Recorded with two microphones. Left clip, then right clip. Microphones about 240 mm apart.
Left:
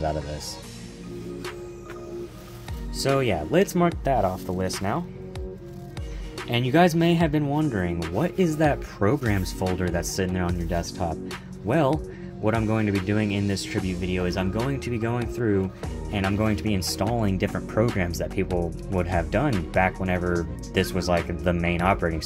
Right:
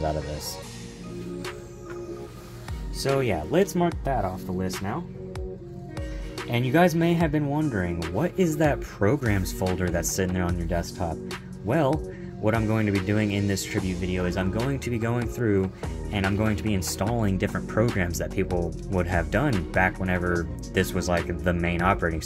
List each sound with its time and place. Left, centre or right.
3.2 s speech: centre
6.3 s speech: centre